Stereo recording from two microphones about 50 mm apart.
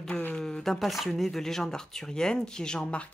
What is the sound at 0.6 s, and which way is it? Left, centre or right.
Speech, centre.